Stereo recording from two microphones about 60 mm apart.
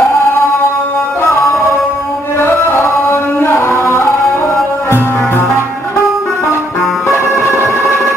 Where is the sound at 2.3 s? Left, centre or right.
Left.